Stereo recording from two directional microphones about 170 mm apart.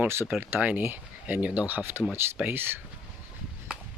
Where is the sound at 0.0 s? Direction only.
10° right (ahead or behind).